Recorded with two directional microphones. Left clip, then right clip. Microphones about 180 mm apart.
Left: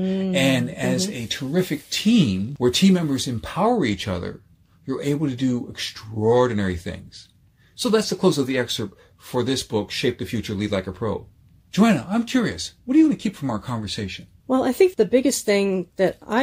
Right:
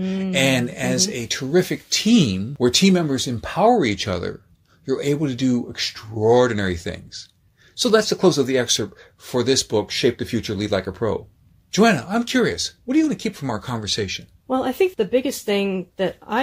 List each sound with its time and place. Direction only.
0.0 s speech: 30° left (ahead or behind)
0.3 s speech: 45° right (ahead or behind)
14.5 s speech: 35° left (ahead or behind)